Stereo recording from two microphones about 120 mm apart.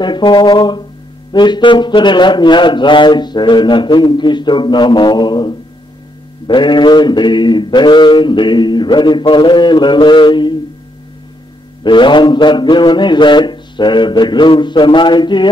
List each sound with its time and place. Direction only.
0.0 s speech: 40° left (ahead or behind)
11.8 s speech: 40° left (ahead or behind)